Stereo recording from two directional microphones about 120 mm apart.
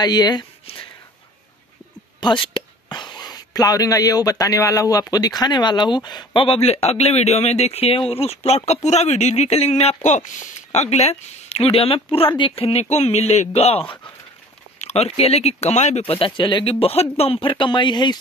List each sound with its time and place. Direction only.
0.0 s speech: 35° left (ahead or behind)
2.1 s speech: 45° left (ahead or behind)
12.9 s speech: 65° left (ahead or behind)
16.3 s speech: 45° left (ahead or behind)